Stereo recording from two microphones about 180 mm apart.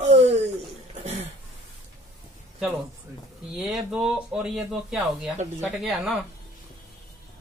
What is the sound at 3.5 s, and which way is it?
Speech, centre (ahead or behind).